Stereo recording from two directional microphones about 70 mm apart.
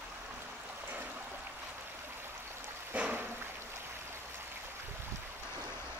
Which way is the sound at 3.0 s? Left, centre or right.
Centre.